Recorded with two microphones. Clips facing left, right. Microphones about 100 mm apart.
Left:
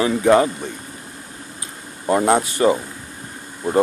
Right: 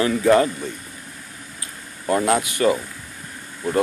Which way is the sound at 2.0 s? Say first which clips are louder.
Left 3 dB; 30° left (ahead or behind).